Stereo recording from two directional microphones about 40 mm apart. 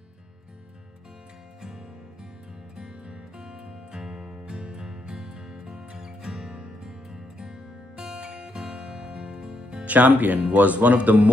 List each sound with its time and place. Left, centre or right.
3.1 s music: centre
8.2 s music: right
8.5 s music: centre
9.8 s speech: right